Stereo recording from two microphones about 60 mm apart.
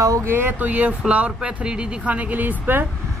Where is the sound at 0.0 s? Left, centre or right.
Right.